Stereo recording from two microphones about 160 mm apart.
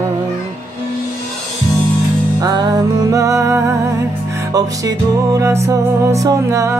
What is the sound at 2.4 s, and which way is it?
Music, 25° right (ahead or behind).